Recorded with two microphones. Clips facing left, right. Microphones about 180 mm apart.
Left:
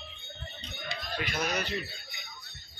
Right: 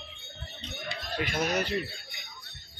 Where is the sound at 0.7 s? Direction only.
55° right (ahead or behind).